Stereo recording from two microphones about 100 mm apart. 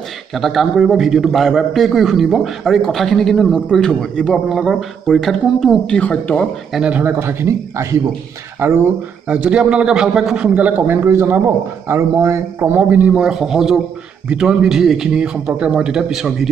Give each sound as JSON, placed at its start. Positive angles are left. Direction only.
{"t": 0.3, "sound": "a man's voice", "side_deg": 0}
{"t": 6.7, "sound": "a man's voice", "side_deg": -10}
{"t": 12.7, "sound": "a man's voice", "side_deg": -15}